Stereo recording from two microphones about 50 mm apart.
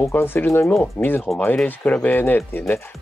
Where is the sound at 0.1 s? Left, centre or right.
Left.